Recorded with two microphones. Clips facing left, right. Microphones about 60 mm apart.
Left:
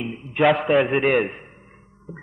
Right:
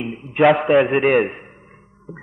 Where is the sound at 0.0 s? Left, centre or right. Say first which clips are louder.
Right 4 dB; centre.